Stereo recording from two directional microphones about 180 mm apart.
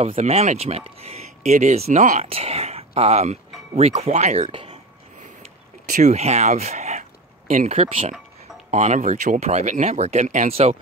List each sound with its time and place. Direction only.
0.0 s speech: 35° right (ahead or behind)
5.9 s speech: 50° right (ahead or behind)
6.1 s speech: 40° right (ahead or behind)